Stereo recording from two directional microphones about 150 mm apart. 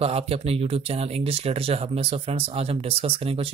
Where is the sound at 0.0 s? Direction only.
40° right (ahead or behind).